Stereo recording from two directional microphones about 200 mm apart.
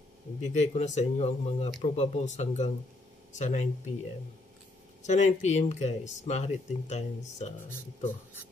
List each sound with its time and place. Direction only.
0.4 s speech: 35° left (ahead or behind)
5.0 s speech: 35° left (ahead or behind)